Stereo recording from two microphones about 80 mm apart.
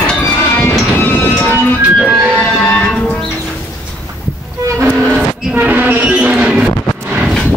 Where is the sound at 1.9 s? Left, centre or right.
Centre.